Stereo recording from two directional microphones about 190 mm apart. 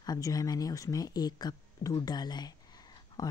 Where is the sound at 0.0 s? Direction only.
20° left (ahead or behind).